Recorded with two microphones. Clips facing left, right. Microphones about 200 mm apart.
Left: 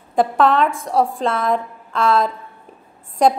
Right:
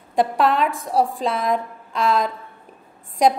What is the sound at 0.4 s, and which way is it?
A woman's voice, centre (ahead or behind).